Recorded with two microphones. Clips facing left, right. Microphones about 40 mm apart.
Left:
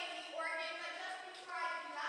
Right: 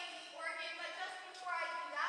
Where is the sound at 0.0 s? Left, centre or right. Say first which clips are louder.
Left 3 dB; left.